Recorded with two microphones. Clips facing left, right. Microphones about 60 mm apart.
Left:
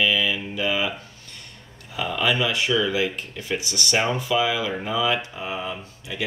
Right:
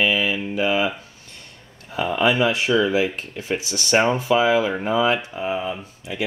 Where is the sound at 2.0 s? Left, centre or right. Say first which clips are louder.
Right 4 dB; right.